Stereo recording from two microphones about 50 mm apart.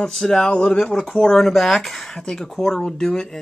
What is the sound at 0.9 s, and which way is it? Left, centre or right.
Speech, centre.